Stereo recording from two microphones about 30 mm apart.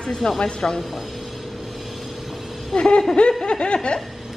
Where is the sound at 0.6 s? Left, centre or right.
Left.